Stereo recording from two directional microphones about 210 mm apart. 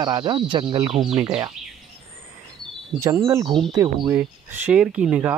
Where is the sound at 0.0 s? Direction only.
20° right (ahead or behind).